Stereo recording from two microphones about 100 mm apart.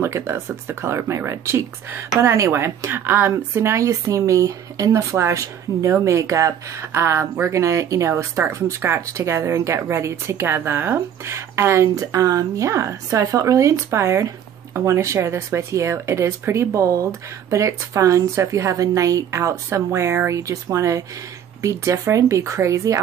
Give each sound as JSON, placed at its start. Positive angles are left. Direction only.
{"t": 0.0, "sound": "speech", "side_deg": -25}